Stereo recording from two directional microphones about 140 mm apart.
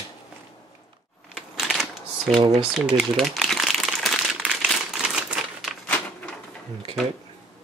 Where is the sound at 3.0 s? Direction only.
Centre (ahead or behind).